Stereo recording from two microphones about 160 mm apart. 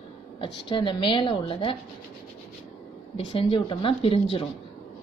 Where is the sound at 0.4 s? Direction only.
30° left (ahead or behind).